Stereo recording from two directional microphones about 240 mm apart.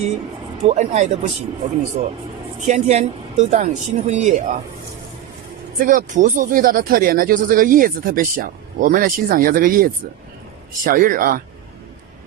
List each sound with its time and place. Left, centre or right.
0.6 s speech: right
2.6 s speech: right
5.8 s speech: right